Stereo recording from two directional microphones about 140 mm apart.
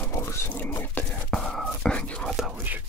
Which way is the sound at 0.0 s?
20° left (ahead or behind).